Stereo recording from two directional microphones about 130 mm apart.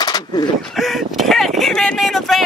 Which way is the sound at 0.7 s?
Centre (ahead or behind).